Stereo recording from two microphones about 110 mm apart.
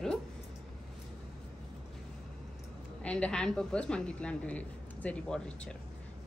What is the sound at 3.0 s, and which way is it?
A woman's voice, 10° left (ahead or behind).